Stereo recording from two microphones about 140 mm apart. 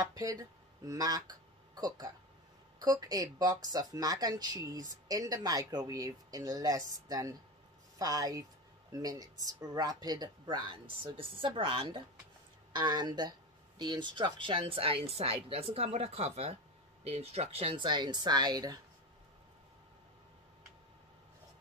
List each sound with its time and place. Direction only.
0.0 s speech: 25° right (ahead or behind)